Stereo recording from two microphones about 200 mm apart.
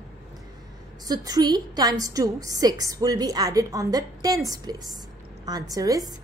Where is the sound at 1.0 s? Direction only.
20° right (ahead or behind).